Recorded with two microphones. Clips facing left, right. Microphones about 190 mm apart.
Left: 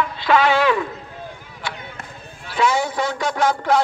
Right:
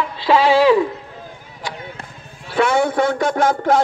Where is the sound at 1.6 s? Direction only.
40° right (ahead or behind).